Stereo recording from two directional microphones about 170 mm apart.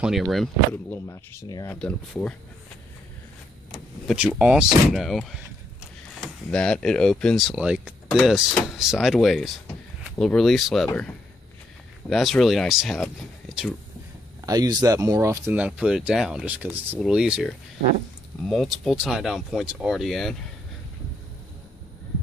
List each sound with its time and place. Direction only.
0.0 s speech: centre (ahead or behind); by 1.8 s 20° left (ahead or behind)
1.8 s speech: 5° left (ahead or behind)
3.7 s speech: 5° right (ahead or behind)
14.4 s speech: 20° right (ahead or behind); by 20.3 s centre (ahead or behind)